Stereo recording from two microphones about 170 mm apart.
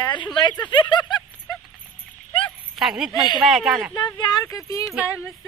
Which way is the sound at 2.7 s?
5° right (ahead or behind).